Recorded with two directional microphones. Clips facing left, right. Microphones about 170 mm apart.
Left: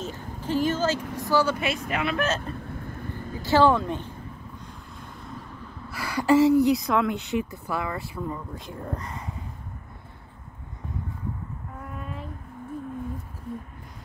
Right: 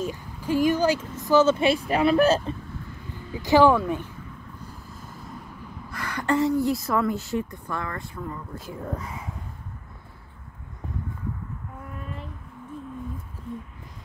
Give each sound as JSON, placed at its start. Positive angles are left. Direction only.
{"t": 0.0, "sound": "a woman's voice", "side_deg": -10}
{"t": 2.7, "sound": "vehicle", "side_deg": 55}
{"t": 3.4, "sound": "speech", "side_deg": -15}
{"t": 5.9, "sound": "a woman's voice", "side_deg": 10}
{"t": 8.5, "sound": "speech", "side_deg": -5}